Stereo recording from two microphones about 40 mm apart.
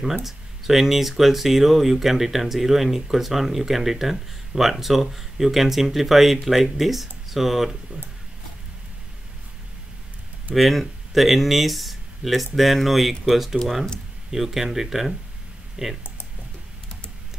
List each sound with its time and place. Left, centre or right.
0.2 s speech: centre
10.5 s speech: centre